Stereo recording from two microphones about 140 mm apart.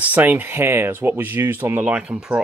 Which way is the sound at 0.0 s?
10° right (ahead or behind).